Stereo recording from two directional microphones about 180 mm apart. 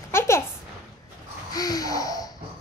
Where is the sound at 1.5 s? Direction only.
20° left (ahead or behind).